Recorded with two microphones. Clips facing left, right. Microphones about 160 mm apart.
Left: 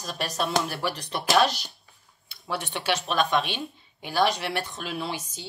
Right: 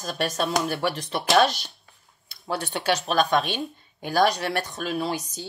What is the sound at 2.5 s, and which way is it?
Speech, 40° right (ahead or behind).